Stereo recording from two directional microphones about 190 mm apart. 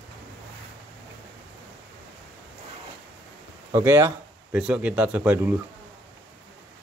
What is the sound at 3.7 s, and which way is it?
Speech, 15° right (ahead or behind).